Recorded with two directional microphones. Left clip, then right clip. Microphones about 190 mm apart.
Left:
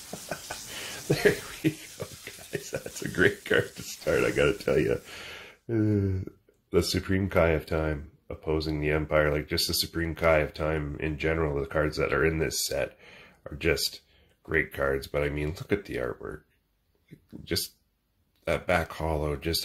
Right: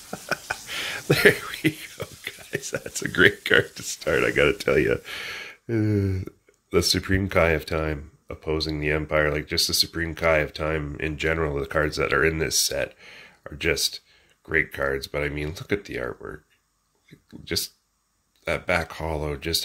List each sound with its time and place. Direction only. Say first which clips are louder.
0.0 s a sound: right 8 dB; centre (ahead or behind)
2.5 s a sound: right 4 dB; 15° right (ahead or behind)
3.7 s speech: right 4 dB; 15° right (ahead or behind)
4.1 s speech: right 3 dB; centre (ahead or behind)
4.4 s speech: right 4 dB; 15° right (ahead or behind)
17.5 s speech: right 3 dB; 5° right (ahead or behind)